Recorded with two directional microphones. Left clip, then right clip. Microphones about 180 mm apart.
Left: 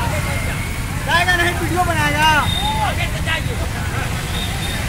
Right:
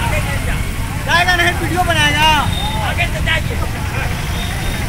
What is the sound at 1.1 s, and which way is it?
Vehicle, 5° right (ahead or behind).